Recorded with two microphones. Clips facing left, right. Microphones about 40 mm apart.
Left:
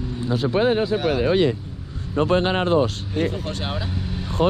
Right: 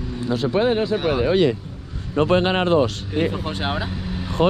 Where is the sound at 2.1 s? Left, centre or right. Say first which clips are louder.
Right 2 dB; right.